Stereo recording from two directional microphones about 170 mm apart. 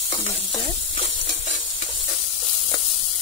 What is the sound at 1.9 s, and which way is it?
Sizzle, 30° left (ahead or behind).